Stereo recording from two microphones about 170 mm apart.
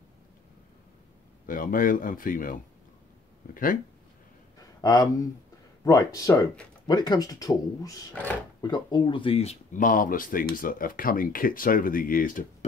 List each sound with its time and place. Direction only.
1.4 s speech: 55° left (ahead or behind)
4.8 s speech: 20° left (ahead or behind)
8.1 s speech: 10° left (ahead or behind)
8.5 s speech: 25° left (ahead or behind)
9.8 s speech: 55° left (ahead or behind)